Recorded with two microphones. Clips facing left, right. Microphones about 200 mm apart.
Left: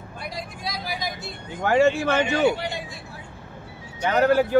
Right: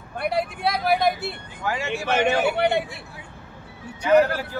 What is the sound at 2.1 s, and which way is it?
Speech, 65° right (ahead or behind).